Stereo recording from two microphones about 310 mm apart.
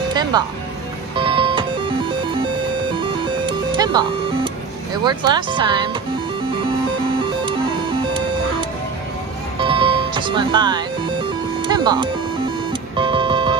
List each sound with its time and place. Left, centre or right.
0.1 s music: centre
5.0 s speech: centre
9.6 s music: centre